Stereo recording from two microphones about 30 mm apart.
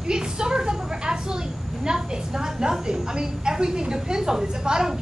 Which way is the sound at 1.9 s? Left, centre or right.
Centre.